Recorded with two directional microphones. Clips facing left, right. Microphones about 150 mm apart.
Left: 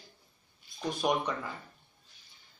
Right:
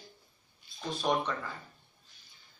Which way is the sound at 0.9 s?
15° left (ahead or behind).